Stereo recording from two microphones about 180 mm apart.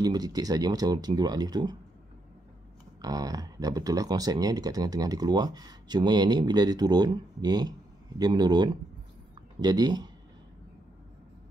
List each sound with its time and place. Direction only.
0.0 s speech: 20° right (ahead or behind)
3.0 s speech: 20° right (ahead or behind)